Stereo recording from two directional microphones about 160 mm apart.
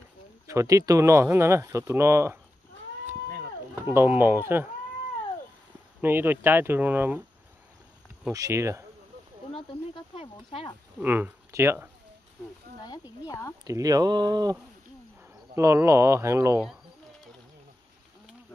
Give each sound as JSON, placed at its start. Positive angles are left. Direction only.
{"t": 0.5, "sound": "speech", "side_deg": -20}
{"t": 3.8, "sound": "speech", "side_deg": -15}
{"t": 5.9, "sound": "speech", "side_deg": -10}
{"t": 8.3, "sound": "speech", "side_deg": -20}
{"t": 9.5, "sound": "a sound", "side_deg": 35}
{"t": 11.0, "sound": "speech", "side_deg": -10}
{"t": 13.7, "sound": "speech", "side_deg": -20}